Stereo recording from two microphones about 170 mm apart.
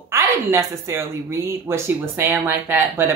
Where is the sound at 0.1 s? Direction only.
15° right (ahead or behind).